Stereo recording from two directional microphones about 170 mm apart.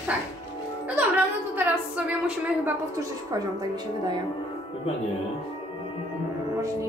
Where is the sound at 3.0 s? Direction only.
20° right (ahead or behind).